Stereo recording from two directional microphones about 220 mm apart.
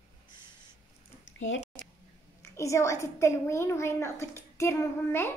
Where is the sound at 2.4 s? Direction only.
15° left (ahead or behind).